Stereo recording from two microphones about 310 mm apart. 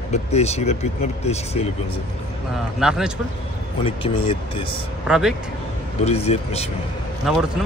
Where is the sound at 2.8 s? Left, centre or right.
Centre.